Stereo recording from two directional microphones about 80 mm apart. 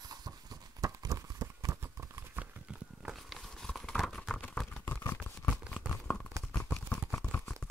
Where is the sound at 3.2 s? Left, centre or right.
Centre.